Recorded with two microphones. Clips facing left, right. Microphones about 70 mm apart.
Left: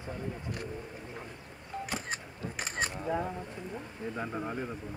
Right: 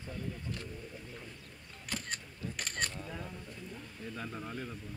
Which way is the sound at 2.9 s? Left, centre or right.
Left.